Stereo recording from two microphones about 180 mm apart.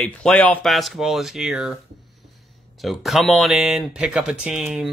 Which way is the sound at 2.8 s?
Centre (ahead or behind).